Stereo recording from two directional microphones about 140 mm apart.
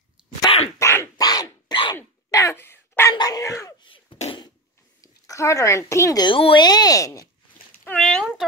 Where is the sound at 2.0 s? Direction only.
20° left (ahead or behind).